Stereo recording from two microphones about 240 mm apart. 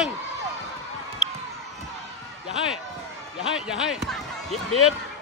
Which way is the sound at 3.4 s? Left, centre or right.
Centre.